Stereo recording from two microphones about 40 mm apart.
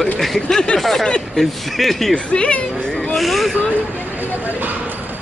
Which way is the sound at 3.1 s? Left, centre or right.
Centre.